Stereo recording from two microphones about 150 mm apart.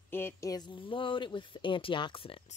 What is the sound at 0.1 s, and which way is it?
Speech, 15° left (ahead or behind).